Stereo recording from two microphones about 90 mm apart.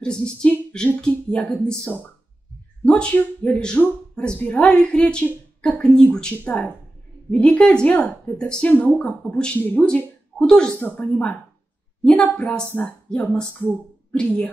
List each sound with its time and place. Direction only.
0.0 s a woman's voice: 10° left (ahead or behind)